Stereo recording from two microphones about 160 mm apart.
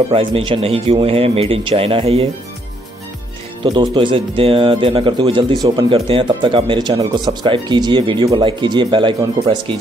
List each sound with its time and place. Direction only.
0.1 s speech: 35° right (ahead or behind)
3.6 s speech: 30° right (ahead or behind)